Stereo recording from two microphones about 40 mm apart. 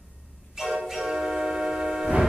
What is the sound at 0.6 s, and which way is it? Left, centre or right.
Music, centre.